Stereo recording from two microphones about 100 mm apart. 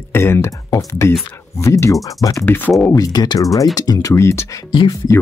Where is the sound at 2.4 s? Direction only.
20° left (ahead or behind).